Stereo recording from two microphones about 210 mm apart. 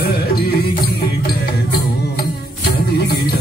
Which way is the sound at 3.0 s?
50° left (ahead or behind).